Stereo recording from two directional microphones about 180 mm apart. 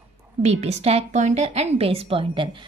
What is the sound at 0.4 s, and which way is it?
A woman's voice, 35° right (ahead or behind).